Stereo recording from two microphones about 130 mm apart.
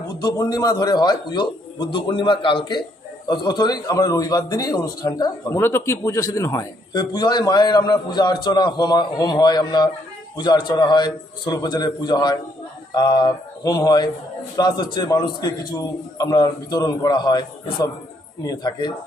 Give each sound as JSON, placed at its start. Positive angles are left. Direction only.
{"t": 0.1, "sound": "a man's voice", "side_deg": 30}
{"t": 5.6, "sound": "a man's voice", "side_deg": 20}